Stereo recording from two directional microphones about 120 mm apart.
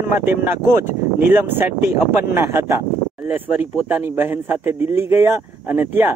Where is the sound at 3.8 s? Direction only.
20° right (ahead or behind).